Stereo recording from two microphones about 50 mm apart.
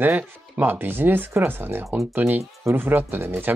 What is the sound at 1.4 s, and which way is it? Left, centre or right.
Speech, right.